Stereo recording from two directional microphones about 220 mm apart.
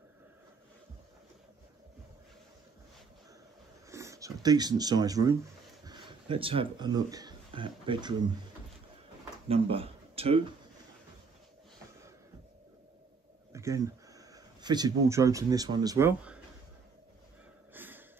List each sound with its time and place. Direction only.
3.9 s speech: 15° right (ahead or behind)
9.5 s speech: 25° right (ahead or behind)
13.5 s speech: 15° right (ahead or behind)
17.7 s a sound: 10° right (ahead or behind)